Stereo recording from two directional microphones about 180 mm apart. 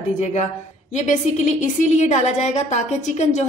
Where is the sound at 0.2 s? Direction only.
40° left (ahead or behind).